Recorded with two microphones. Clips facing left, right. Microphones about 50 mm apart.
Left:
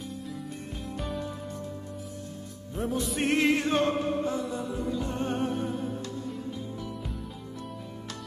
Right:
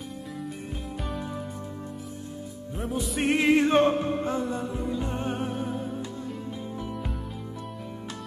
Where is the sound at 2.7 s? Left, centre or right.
Centre; by 4.6 s right.